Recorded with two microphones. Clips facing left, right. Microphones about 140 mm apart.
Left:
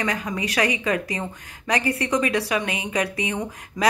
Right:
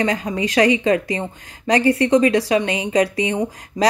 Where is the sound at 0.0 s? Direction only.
30° right (ahead or behind).